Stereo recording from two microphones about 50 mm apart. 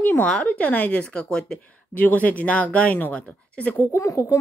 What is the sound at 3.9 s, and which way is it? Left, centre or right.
Speech, left.